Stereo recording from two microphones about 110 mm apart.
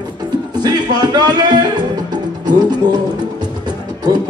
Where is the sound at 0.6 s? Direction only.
40° right (ahead or behind).